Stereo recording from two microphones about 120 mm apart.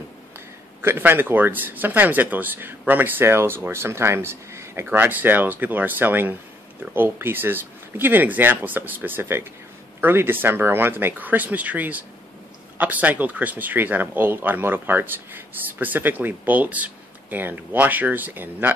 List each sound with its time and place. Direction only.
0.7 s speech: 15° right (ahead or behind)